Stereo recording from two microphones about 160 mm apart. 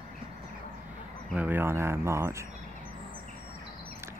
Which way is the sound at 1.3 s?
10° right (ahead or behind).